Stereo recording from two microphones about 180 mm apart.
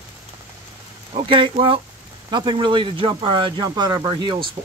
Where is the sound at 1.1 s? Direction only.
30° right (ahead or behind).